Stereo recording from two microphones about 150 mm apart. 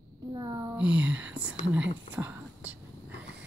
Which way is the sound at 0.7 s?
10° right (ahead or behind).